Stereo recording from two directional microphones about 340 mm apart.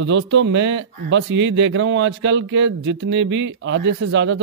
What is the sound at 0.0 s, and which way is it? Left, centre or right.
Speech, right.